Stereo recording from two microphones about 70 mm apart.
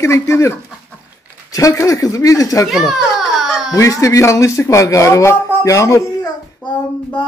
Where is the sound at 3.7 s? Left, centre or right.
Left.